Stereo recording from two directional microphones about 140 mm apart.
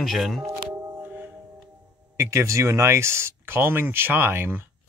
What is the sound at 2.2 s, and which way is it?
Speech, 20° right (ahead or behind).